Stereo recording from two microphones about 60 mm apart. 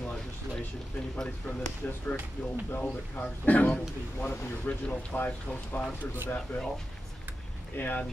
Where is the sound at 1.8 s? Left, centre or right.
Left.